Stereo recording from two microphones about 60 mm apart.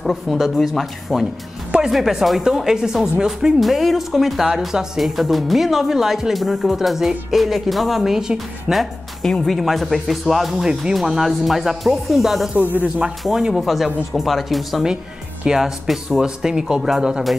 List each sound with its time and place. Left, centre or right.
0.0 s speech: centre
9.2 s speech: centre
12.5 s speech: right
13.2 s speech: centre